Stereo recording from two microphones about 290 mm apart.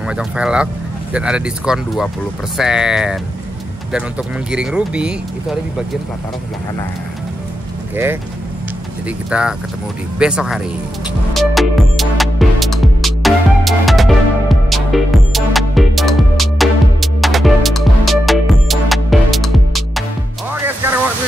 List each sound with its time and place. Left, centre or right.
0.1 s speech: centre
4.5 s speech: centre
7.9 s speech: centre
9.3 s speech: centre
11.3 s music: centre